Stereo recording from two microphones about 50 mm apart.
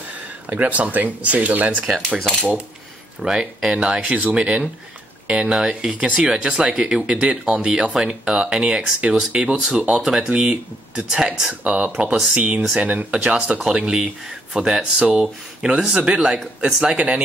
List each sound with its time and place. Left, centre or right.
0.5 s speech: right
3.2 s speech: centre
9.9 s speech: centre